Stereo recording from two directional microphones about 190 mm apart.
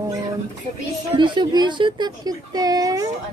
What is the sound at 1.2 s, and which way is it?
A woman's voice, 25° right (ahead or behind).